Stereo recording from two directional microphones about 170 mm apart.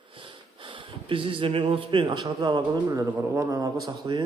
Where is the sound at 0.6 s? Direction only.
30° right (ahead or behind).